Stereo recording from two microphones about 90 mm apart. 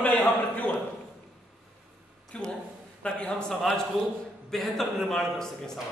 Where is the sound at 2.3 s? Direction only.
10° left (ahead or behind).